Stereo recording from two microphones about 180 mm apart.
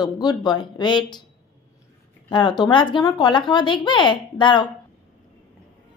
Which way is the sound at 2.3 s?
25° left (ahead or behind).